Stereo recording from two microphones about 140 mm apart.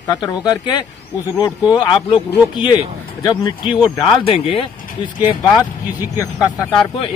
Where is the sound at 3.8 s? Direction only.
35° left (ahead or behind).